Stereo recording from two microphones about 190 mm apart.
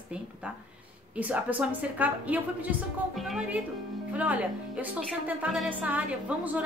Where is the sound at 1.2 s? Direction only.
10° right (ahead or behind).